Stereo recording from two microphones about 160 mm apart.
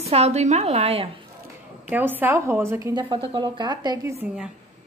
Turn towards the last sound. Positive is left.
turn(degrees=-15)  # may be behind; listen again after turning